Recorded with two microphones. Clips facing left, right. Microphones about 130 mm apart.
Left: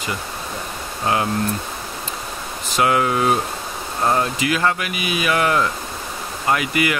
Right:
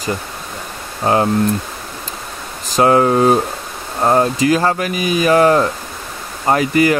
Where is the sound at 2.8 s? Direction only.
35° right (ahead or behind).